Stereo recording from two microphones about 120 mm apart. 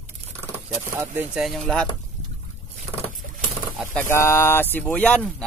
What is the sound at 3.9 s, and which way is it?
Speech, 20° left (ahead or behind).